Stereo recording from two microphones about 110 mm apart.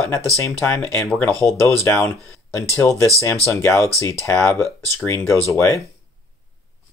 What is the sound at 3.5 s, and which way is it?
Speech, 25° left (ahead or behind).